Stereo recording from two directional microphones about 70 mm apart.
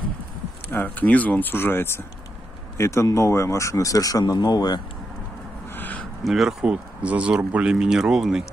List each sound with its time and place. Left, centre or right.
0.7 s speech: left
5.7 s a sound: left
6.2 s speech: centre
6.6 s speech: centre